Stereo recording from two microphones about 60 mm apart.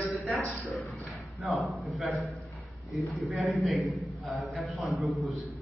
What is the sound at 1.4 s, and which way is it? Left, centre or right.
A man's voice, centre.